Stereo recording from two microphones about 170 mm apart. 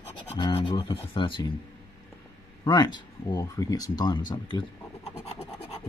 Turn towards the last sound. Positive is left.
turn(degrees=35)  # may be behind; listen again after turning